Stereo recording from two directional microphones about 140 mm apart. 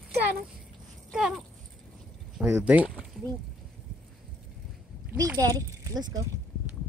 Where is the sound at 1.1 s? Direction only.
5° right (ahead or behind).